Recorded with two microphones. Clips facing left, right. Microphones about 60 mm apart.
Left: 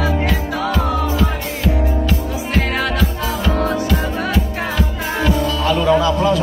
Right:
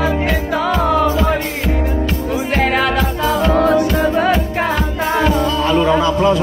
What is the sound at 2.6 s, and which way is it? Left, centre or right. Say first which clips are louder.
Music: right 4 dB; right.